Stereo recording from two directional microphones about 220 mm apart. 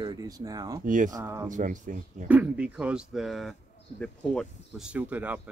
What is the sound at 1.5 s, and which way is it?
Speech, 35° right (ahead or behind).